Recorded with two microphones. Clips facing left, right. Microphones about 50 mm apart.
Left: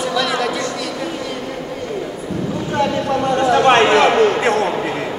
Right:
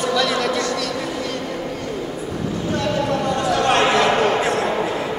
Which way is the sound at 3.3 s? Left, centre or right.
Left.